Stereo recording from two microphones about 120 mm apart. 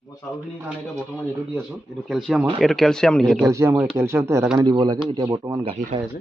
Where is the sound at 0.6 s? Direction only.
10° right (ahead or behind); by 3.4 s 5° left (ahead or behind).